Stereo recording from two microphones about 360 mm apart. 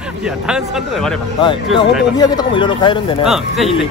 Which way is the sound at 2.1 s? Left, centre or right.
Centre.